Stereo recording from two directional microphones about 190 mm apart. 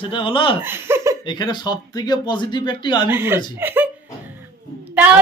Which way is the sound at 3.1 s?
10° right (ahead or behind).